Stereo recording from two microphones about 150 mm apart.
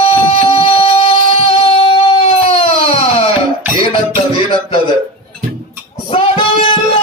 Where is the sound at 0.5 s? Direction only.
40° left (ahead or behind).